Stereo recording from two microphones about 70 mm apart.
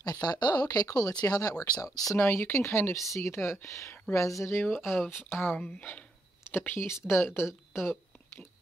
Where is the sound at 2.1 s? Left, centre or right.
Left.